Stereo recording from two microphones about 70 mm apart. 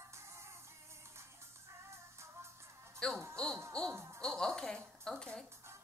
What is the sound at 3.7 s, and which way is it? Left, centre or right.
Music, centre.